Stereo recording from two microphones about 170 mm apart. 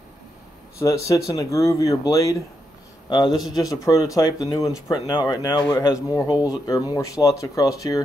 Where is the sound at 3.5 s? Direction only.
20° left (ahead or behind).